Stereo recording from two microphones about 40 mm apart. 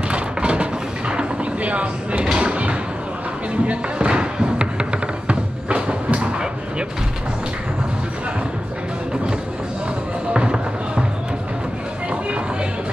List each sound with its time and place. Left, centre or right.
0.1 s a sound: right
3.6 s music: right
10.3 s music: right